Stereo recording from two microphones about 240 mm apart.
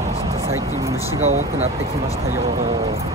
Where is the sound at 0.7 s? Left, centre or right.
Centre.